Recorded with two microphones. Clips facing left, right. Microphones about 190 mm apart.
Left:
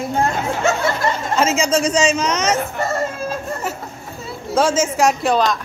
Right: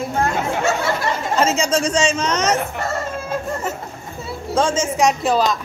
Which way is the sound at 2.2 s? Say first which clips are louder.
Even; 35° right (ahead or behind).